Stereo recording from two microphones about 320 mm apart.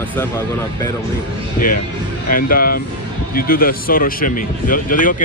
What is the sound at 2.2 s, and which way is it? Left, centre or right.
Speech, left.